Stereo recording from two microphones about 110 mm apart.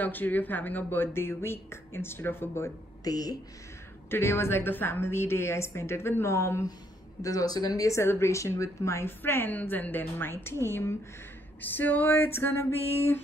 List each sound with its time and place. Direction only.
0.0 s speech: 15° left (ahead or behind)
3.0 s speech: 35° left (ahead or behind)
4.1 s speech: 20° left (ahead or behind)
11.6 s a sound: 15° left (ahead or behind)
12.4 s speech: 20° left (ahead or behind)